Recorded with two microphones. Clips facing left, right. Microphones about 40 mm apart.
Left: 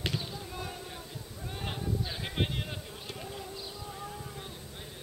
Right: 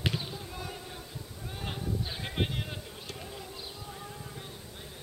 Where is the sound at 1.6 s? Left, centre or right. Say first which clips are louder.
Even; centre.